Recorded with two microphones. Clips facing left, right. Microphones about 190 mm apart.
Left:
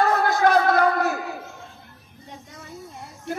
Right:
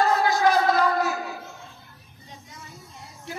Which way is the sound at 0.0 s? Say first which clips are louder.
Left 1 dB; 55° left (ahead or behind).